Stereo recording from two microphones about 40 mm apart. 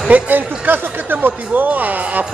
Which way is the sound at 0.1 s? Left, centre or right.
Right.